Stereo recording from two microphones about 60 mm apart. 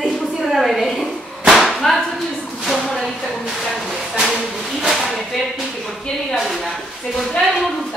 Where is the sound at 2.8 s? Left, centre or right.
Centre.